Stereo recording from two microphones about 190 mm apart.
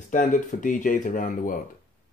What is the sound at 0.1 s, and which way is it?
Speech, 45° left (ahead or behind).